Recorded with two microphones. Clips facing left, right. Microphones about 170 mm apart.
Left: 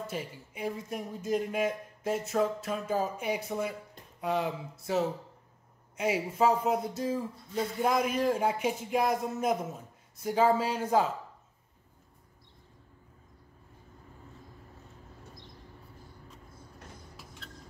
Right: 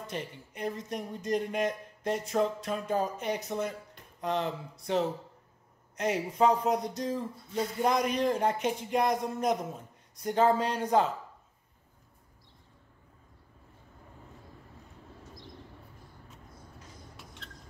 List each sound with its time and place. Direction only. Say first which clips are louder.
0.0 s speech: left 1 dB; 5° left (ahead or behind)
17.2 s vehicle: even; 5° left (ahead or behind)